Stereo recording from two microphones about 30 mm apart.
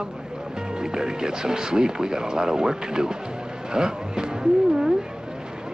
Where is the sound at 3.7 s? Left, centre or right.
Right.